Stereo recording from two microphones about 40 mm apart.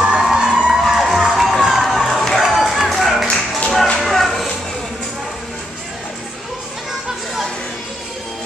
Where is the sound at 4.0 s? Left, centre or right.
Centre.